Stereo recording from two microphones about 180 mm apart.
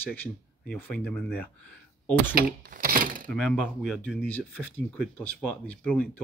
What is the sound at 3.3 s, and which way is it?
Speech, centre (ahead or behind).